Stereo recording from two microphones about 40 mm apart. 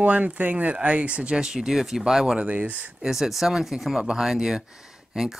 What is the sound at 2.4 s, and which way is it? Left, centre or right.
Speech, right.